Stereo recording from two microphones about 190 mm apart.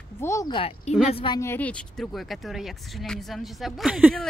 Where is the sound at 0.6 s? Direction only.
30° left (ahead or behind).